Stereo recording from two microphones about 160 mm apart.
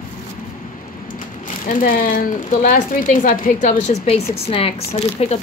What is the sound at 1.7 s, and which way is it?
Speech, 60° left (ahead or behind).